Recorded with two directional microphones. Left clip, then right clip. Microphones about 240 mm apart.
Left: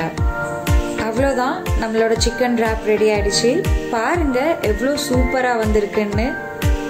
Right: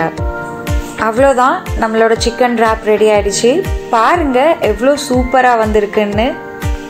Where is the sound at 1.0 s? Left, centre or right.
Centre.